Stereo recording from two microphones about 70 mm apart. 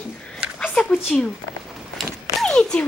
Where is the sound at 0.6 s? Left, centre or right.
Centre.